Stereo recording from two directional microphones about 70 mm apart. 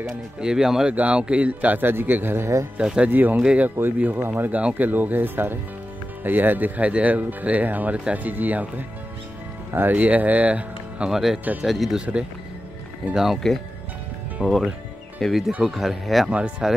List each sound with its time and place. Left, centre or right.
0.0 s speech: centre; by 2.5 s right
2.8 s speech: centre
3.1 s speech: right
11.1 s speech: centre
13.1 s speech: centre
14.4 s speech: centre
16.3 s speech: centre